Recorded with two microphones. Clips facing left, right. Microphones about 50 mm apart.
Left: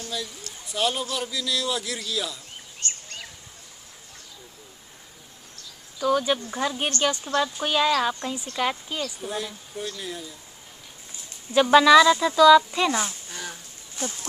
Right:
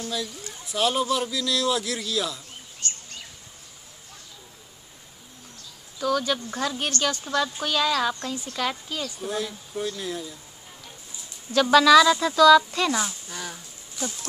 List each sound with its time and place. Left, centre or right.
0.7 s a man's voice: centre
2.8 s bird: left
6.0 s a woman's voice: centre
9.0 s a man's voice: centre
11.5 s speech: centre
13.3 s a sound: centre
14.0 s speech: left